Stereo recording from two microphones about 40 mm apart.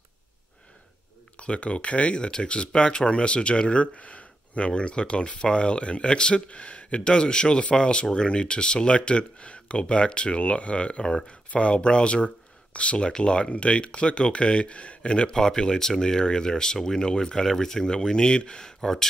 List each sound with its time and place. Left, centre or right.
1.3 s speech: left; by 19.0 s centre